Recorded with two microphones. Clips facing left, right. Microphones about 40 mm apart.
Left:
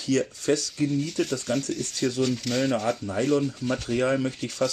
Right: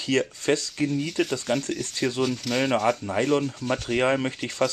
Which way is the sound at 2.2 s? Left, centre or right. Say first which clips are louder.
Left 1 dB; centre.